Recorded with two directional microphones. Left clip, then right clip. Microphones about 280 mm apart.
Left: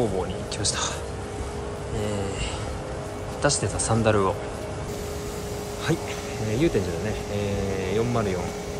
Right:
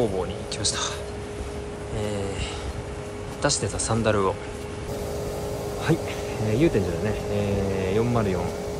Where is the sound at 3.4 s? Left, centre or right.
Centre.